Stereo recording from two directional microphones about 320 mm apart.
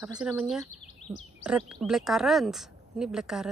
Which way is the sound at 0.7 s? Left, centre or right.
Left.